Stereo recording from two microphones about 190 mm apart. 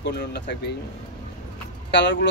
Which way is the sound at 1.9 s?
70° left (ahead or behind).